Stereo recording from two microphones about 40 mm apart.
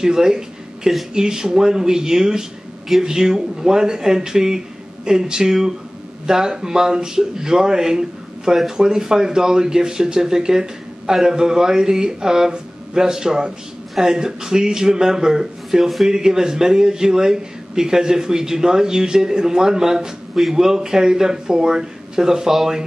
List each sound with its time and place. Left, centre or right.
0.0 s speech: centre